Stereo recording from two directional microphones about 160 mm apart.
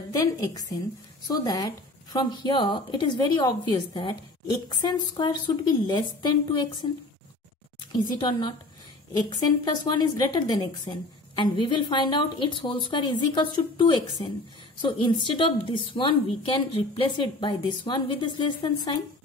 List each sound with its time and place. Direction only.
0.1 s a woman's voice: 20° left (ahead or behind)
7.9 s a woman's voice: 30° left (ahead or behind)
9.8 s a woman's voice: 25° left (ahead or behind)